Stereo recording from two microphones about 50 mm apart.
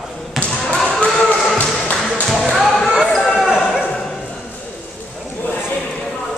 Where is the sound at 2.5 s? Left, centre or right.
Centre.